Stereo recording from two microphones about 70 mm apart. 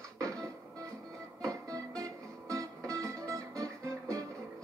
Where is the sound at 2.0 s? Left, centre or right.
Right.